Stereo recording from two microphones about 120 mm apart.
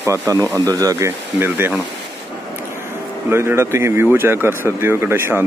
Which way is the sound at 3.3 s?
20° right (ahead or behind).